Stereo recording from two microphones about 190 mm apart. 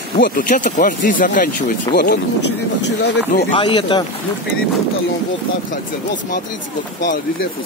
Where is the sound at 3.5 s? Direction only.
25° left (ahead or behind).